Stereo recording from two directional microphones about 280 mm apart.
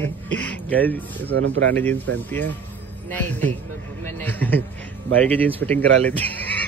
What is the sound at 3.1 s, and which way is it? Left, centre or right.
Speech, centre.